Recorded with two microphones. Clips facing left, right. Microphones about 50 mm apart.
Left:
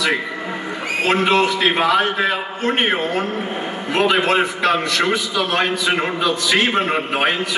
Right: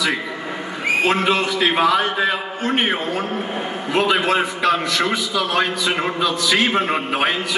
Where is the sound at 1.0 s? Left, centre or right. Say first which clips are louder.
Left 5 dB; centre.